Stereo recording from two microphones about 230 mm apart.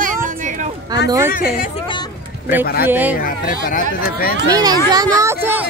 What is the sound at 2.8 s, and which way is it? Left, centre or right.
Speech, centre.